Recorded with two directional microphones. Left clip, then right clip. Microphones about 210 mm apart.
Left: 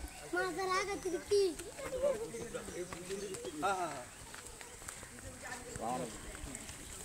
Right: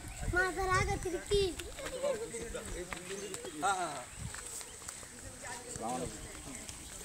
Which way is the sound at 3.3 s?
45° left (ahead or behind).